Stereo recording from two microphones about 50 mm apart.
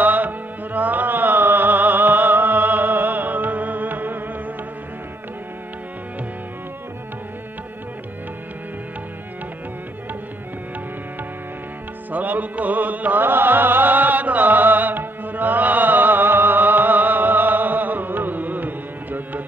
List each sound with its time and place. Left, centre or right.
0.0 s music: right
12.1 s music: right
13.2 s music: right